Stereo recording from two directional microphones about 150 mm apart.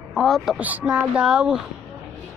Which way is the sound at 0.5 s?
10° right (ahead or behind).